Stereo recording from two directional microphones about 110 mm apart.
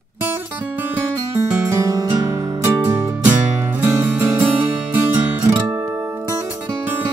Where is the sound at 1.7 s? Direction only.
30° right (ahead or behind).